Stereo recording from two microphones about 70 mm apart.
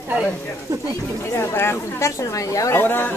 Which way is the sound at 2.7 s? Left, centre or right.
Left.